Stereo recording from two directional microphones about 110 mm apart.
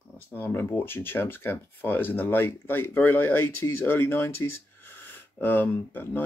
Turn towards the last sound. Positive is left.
turn(degrees=20)  # may be behind; listen again after turning